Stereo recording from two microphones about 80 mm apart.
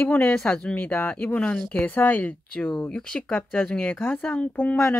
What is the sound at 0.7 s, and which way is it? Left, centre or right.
Speech, left.